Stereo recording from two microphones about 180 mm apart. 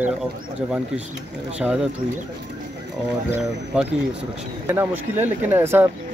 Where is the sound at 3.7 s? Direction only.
5° right (ahead or behind).